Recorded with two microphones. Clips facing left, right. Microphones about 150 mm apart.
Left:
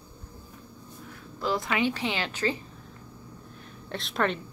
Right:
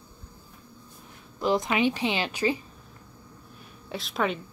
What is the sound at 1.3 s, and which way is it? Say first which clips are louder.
Speech: right 3 dB; 20° right (ahead or behind).